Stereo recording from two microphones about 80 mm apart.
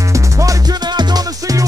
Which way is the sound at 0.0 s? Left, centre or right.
Right.